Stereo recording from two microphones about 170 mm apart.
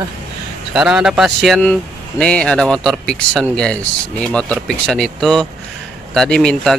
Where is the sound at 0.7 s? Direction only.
5° right (ahead or behind).